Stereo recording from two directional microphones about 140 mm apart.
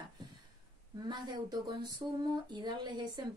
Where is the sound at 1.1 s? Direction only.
30° right (ahead or behind).